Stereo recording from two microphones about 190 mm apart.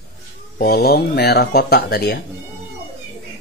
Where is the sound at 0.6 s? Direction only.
55° left (ahead or behind).